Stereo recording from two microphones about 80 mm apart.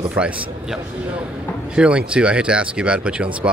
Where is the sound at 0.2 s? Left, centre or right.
Centre.